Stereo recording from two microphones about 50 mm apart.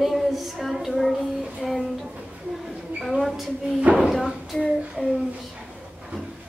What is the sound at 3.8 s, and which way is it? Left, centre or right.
Speech, right.